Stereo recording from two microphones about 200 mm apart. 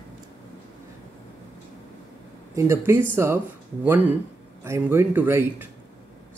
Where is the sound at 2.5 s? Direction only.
15° right (ahead or behind).